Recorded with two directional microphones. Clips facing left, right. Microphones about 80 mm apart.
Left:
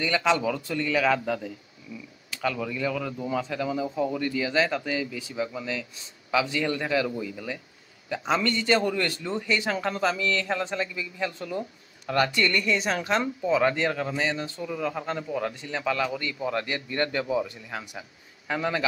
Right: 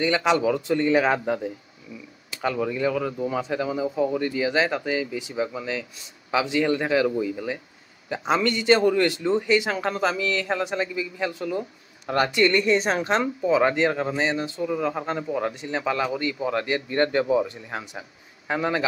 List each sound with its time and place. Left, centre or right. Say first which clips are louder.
0.0 s a man's voice: right 3 dB; centre
13.4 s a man's voice: right 4 dB; centre